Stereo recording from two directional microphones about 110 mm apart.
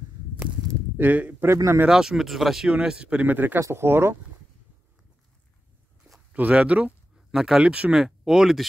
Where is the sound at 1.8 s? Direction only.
5° right (ahead or behind); by 4.1 s 20° right (ahead or behind).